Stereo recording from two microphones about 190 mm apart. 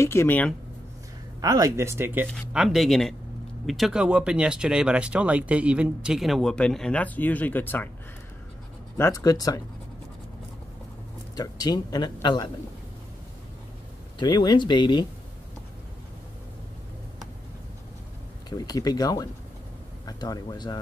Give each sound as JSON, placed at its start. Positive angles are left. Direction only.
{"t": 0.0, "sound": "speech", "side_deg": 15}
{"t": 1.4, "sound": "speech", "side_deg": -20}
{"t": 8.9, "sound": "speech", "side_deg": 15}
{"t": 11.3, "sound": "speech", "side_deg": 20}
{"t": 14.1, "sound": "speech", "side_deg": 25}
{"t": 18.5, "sound": "speech", "side_deg": 20}